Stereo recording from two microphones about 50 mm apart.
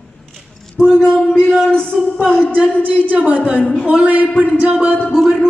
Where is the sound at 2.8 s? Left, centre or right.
Right.